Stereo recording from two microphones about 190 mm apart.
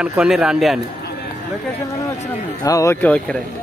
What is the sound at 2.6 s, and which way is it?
Speech, 15° left (ahead or behind).